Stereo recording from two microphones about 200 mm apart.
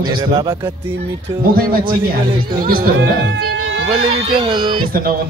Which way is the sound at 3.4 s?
55° right (ahead or behind).